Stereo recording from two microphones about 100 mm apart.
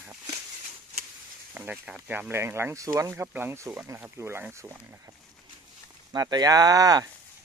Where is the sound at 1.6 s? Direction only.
10° right (ahead or behind); by 3.1 s 35° right (ahead or behind).